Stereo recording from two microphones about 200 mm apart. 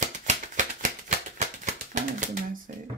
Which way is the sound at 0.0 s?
40° right (ahead or behind).